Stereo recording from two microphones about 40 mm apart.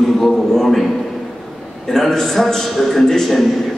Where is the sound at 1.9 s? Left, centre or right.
Centre.